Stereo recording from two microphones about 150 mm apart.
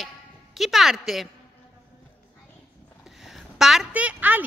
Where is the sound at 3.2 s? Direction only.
Centre (ahead or behind).